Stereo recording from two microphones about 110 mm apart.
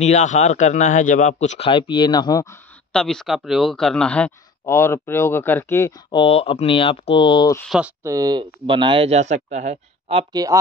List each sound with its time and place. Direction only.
0.0 s a man's voice: 90° left
1.7 s speech: 50° left (ahead or behind)
2.9 s speech: 5° left (ahead or behind)
4.6 s speech: 25° left (ahead or behind)
6.1 s speech: 60° left (ahead or behind)
8.0 s speech: 30° right (ahead or behind); by 9.1 s 50° right (ahead or behind)
9.1 s speech: 90° right
10.3 s speech: 35° right (ahead or behind)